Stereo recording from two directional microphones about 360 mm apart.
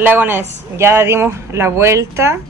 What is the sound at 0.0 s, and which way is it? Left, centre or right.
Speech, centre.